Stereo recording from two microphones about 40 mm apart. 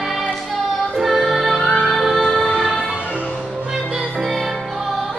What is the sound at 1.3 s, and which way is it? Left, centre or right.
Music, centre.